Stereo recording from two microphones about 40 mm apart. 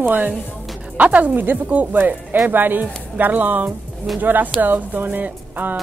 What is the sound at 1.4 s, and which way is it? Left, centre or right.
Speech, right.